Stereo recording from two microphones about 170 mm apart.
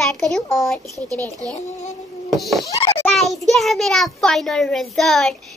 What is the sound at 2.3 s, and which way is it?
A child's voice, centre (ahead or behind).